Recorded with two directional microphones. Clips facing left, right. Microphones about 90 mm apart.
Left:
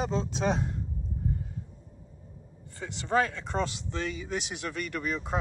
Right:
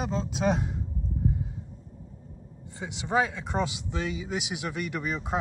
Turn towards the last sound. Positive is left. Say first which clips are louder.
# right 1 dB
turn(degrees=-15)  # may be behind; listen again after turning